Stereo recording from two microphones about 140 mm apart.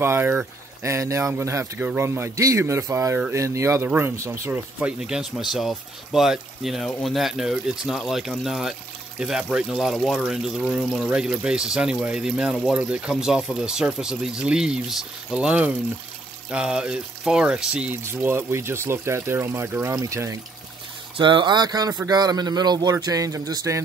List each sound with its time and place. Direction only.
0.0 s a man's voice: 15° right (ahead or behind)
21.2 s a man's voice: 35° right (ahead or behind)